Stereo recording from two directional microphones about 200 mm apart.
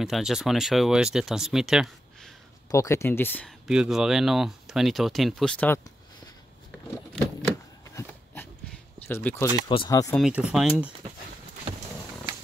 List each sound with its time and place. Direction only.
0.0 s speech: centre (ahead or behind)
2.7 s speech: 15° left (ahead or behind)
3.6 s speech: 5° right (ahead or behind)
9.0 s speech: 10° left (ahead or behind)
10.1 s speech: 5° right (ahead or behind)